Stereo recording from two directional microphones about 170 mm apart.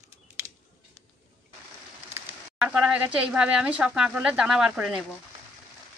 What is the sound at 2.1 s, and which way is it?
Speech, 5° right (ahead or behind).